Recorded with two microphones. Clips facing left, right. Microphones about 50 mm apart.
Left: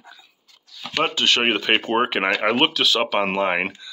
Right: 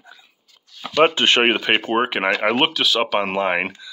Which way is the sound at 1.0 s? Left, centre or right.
Right.